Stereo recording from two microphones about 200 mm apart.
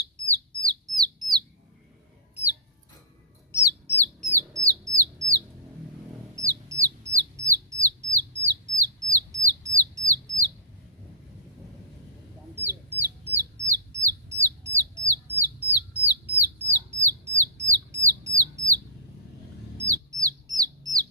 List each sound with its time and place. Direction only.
0.0 s bird: 15° right (ahead or behind)
3.8 s bird: 10° left (ahead or behind)
4.3 s bird: 15° right (ahead or behind)
6.3 s chicken: 15° right (ahead or behind)
7.2 s bird: 15° right (ahead or behind)
12.5 s chicken: 10° right (ahead or behind)
13.7 s bird: 15° right (ahead or behind)
19.9 s bird: 15° right (ahead or behind)